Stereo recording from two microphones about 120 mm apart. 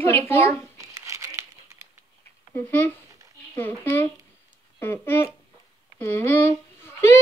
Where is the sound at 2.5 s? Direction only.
15° left (ahead or behind).